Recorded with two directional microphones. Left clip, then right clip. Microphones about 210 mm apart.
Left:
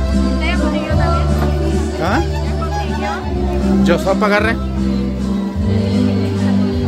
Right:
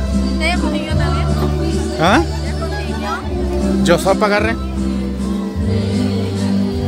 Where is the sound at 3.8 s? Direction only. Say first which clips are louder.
Right 2 dB; 25° right (ahead or behind).